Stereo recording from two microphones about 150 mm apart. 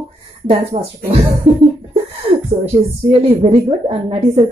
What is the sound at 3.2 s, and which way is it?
A woman's voice, 40° right (ahead or behind).